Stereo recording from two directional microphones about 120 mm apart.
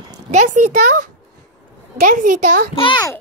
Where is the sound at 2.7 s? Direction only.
45° left (ahead or behind).